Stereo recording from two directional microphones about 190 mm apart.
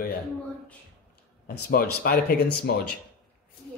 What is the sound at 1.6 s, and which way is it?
A man's voice, 50° left (ahead or behind).